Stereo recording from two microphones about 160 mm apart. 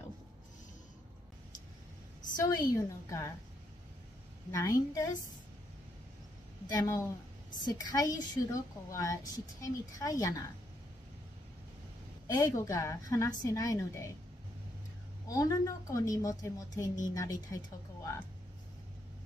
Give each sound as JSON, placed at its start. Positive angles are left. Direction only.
{"t": 2.4, "sound": "a woman's voice", "side_deg": 25}
{"t": 4.5, "sound": "a woman's voice", "side_deg": 20}
{"t": 6.7, "sound": "a woman's voice", "side_deg": 20}
{"t": 12.3, "sound": "a woman's voice", "side_deg": 20}
{"t": 15.2, "sound": "a woman's voice", "side_deg": 25}